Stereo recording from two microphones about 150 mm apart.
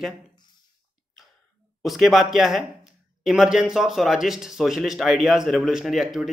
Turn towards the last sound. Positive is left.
turn(degrees=0)  # may be behind; listen again after turning